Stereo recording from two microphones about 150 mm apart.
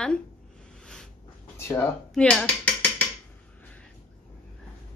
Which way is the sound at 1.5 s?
15° left (ahead or behind).